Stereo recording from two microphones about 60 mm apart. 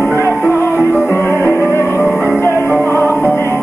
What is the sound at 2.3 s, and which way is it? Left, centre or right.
Music, left.